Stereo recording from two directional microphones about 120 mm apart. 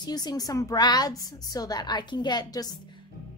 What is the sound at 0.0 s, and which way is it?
A woman's voice, 35° left (ahead or behind).